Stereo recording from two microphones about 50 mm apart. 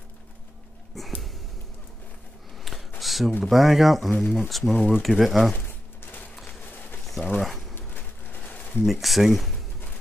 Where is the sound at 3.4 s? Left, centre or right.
Centre.